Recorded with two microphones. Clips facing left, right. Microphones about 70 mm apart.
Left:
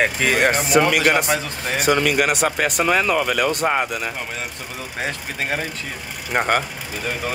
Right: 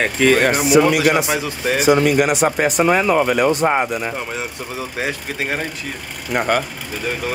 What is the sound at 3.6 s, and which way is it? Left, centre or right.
Speech, right.